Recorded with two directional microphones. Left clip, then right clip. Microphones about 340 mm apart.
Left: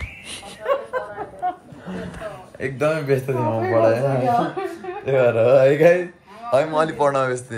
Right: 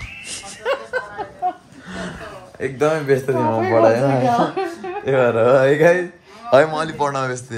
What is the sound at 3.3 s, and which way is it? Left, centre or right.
Speech, right.